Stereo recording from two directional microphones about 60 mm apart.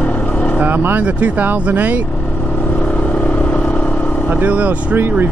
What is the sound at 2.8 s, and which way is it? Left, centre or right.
Vehicle, left.